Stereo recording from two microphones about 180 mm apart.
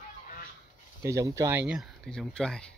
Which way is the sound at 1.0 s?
15° right (ahead or behind).